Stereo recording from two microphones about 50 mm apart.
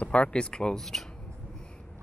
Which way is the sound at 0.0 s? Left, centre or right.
Left.